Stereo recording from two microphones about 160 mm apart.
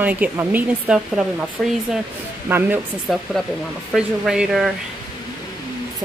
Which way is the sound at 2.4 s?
15° right (ahead or behind).